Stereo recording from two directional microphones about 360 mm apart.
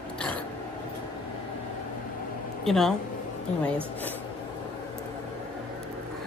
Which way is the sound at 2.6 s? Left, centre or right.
Centre.